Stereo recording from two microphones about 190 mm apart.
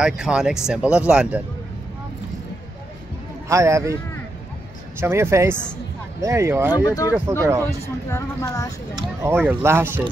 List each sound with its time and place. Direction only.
0.0 s speech: 5° right (ahead or behind)
3.4 s speech: 15° right (ahead or behind)
5.0 s speech: 15° right (ahead or behind)
6.7 s speech: 20° left (ahead or behind)
7.3 s speech: 15° right (ahead or behind)
8.1 s speech: 15° left (ahead or behind)
8.9 s speech: 15° right (ahead or behind)